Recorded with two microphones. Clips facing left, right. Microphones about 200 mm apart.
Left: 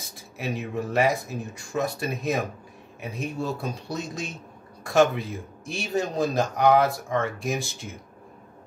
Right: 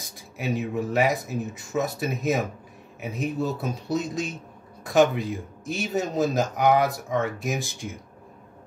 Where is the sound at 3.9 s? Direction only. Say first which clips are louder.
Right 5 dB; centre (ahead or behind).